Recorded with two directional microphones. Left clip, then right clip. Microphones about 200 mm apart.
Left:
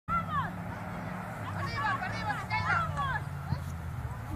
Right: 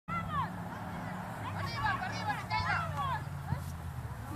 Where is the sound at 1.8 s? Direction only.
15° left (ahead or behind).